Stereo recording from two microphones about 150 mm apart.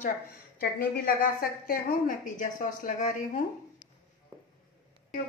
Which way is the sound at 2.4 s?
65° left (ahead or behind).